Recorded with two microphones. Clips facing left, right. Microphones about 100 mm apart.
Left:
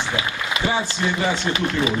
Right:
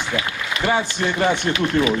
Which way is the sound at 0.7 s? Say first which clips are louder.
Right 3 dB; 55° right (ahead or behind).